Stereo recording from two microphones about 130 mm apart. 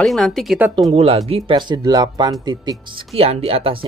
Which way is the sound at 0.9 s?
50° right (ahead or behind).